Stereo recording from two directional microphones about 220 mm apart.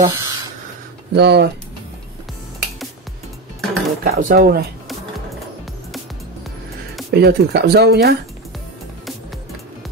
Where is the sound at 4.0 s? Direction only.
40° right (ahead or behind).